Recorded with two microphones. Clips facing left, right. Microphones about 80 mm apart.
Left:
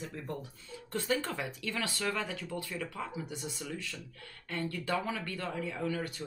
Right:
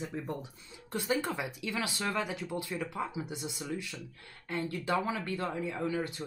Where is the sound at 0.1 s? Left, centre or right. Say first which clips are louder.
Right 3 dB; centre.